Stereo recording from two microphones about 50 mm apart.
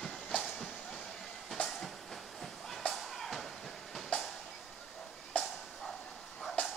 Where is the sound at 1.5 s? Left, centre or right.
Centre.